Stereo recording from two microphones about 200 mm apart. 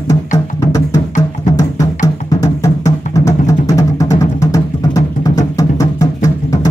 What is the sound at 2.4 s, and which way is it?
Music, 15° left (ahead or behind).